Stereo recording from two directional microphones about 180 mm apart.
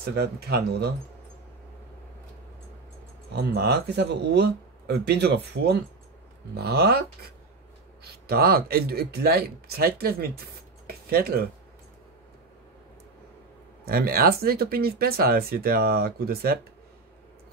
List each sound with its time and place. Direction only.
0.0 s speech: 60° right (ahead or behind)
3.3 s speech: 65° right (ahead or behind)
8.0 s speech: 60° right (ahead or behind)
13.8 s speech: 55° right (ahead or behind)